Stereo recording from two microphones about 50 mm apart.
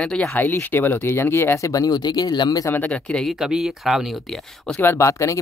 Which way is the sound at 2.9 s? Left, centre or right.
Centre.